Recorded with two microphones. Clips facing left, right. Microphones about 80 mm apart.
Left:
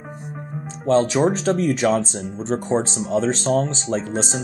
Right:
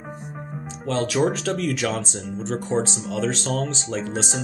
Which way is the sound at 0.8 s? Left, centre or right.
Left.